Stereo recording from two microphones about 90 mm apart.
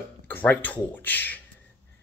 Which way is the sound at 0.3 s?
20° left (ahead or behind).